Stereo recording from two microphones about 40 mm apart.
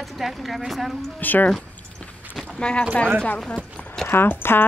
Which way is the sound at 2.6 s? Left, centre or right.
Left.